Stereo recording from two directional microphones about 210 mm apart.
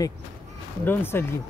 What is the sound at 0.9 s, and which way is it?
Speech, 10° left (ahead or behind).